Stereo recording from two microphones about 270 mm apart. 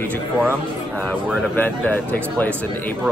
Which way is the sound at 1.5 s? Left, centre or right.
Centre.